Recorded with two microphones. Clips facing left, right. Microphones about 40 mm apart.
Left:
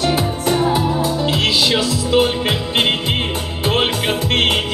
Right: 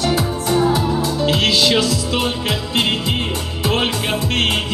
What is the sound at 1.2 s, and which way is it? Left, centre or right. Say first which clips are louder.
Music: right 3 dB; centre.